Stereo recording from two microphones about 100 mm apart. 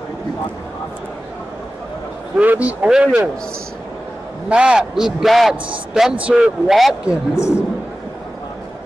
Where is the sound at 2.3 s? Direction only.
15° right (ahead or behind).